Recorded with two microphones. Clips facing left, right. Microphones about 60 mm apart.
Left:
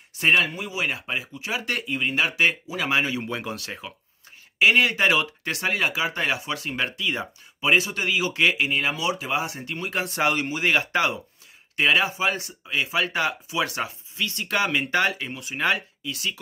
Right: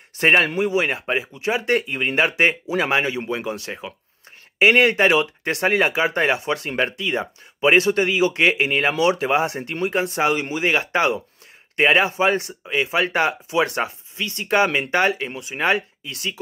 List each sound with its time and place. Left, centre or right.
0.2 s speech: right
3.3 s speech: centre
4.6 s speech: right
7.7 s speech: right
8.0 s speech: right
8.6 s speech: right
10.2 s speech: centre
11.7 s speech: right
15.7 s speech: right